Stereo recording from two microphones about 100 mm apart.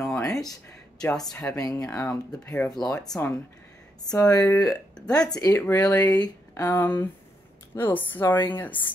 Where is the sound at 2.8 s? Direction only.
45° left (ahead or behind).